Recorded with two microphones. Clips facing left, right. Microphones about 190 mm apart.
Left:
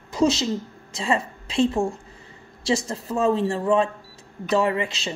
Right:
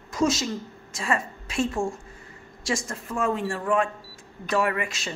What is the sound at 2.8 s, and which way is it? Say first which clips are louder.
Speech: left 5 dB; 25° left (ahead or behind).